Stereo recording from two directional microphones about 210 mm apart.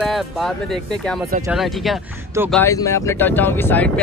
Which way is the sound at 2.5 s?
10° left (ahead or behind).